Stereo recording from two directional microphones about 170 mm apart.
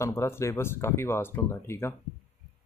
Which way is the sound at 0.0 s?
15° left (ahead or behind).